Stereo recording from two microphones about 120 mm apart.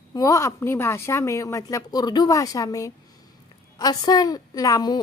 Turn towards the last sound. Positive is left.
turn(degrees=35)  # may be behind; listen again after turning